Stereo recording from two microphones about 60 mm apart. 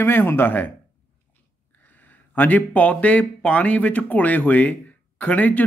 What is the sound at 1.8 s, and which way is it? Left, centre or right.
Speech, left.